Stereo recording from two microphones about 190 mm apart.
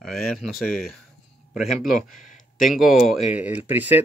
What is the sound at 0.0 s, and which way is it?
Speech, centre (ahead or behind).